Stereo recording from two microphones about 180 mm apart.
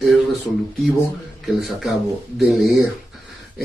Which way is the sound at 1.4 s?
Centre (ahead or behind).